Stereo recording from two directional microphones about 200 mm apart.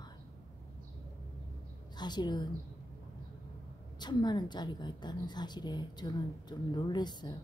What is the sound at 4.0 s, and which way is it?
A woman's voice, 20° left (ahead or behind).